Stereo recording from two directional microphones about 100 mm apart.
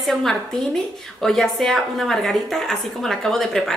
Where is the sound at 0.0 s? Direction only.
Centre (ahead or behind).